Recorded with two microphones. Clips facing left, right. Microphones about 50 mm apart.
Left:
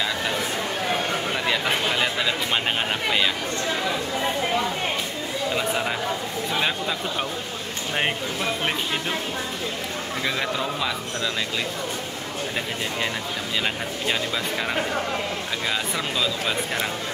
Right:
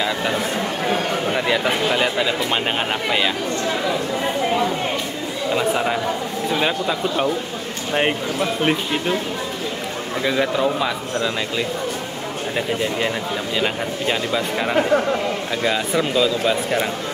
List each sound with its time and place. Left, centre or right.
1.3 s a man's voice: centre
5.5 s speech: centre
10.2 s speech: centre
10.6 s speech: centre
13.6 s speech: centre